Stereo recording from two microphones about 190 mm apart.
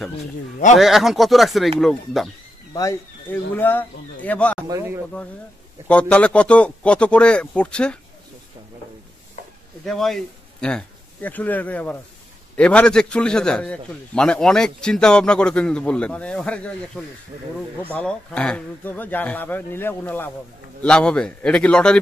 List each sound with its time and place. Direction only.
0.7 s a man's voice: centre (ahead or behind)
2.7 s speech: 15° left (ahead or behind)
4.6 s speech: 15° right (ahead or behind)
5.9 s a man's voice: 5° left (ahead or behind)
9.8 s a man's voice: centre (ahead or behind)